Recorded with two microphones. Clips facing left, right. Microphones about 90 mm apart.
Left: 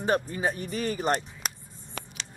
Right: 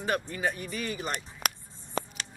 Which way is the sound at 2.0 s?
30° right (ahead or behind).